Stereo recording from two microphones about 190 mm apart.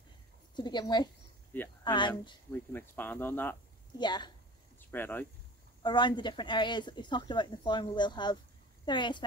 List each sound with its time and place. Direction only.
0.6 s speech: 20° left (ahead or behind)
1.5 s speech: 10° left (ahead or behind)
1.9 s speech: 25° left (ahead or behind)
2.5 s speech: 10° left (ahead or behind)
4.0 s speech: 25° left (ahead or behind)
4.7 s a sound: 10° left (ahead or behind)
5.8 s speech: 25° left (ahead or behind)